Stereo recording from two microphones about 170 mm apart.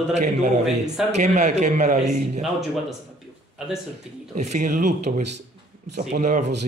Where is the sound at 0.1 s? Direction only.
45° right (ahead or behind).